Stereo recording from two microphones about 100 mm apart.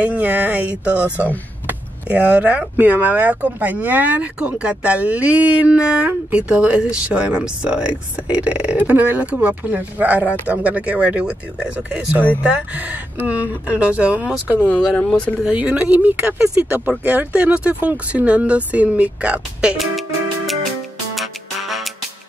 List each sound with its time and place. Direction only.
0.0 s speech: 15° right (ahead or behind)
1.7 s power windows: 15° right (ahead or behind)
2.8 s speech: 15° right (ahead or behind)
15.0 s speech: 10° left (ahead or behind)
15.4 s speech: 15° right (ahead or behind)
19.8 s music: centre (ahead or behind)